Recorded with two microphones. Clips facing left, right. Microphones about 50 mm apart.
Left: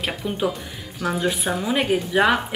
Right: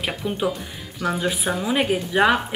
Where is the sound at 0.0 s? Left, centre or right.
Centre.